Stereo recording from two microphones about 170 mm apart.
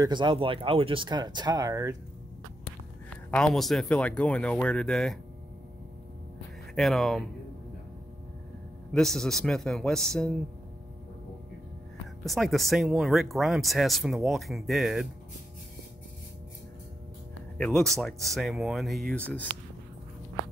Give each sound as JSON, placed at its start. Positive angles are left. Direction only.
{"t": 0.0, "sound": "speech", "side_deg": -25}
{"t": 3.1, "sound": "speech", "side_deg": 5}
{"t": 6.7, "sound": "speech", "side_deg": 0}
{"t": 8.9, "sound": "speech", "side_deg": 5}
{"t": 12.3, "sound": "speech", "side_deg": 0}
{"t": 17.6, "sound": "speech", "side_deg": 0}